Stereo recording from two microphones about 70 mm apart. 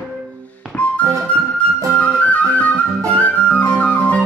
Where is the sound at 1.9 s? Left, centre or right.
Left.